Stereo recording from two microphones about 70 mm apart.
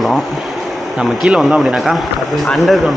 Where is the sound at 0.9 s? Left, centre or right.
Centre.